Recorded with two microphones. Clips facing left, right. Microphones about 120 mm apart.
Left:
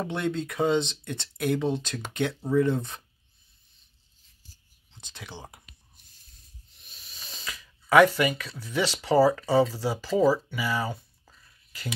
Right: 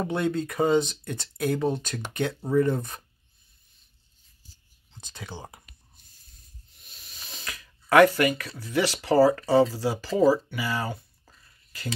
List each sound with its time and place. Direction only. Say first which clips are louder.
0.0 s speech: right 3 dB; 10° right (ahead or behind)
5.3 s speech: right 2 dB; 5° right (ahead or behind)
6.8 s speech: even; centre (ahead or behind)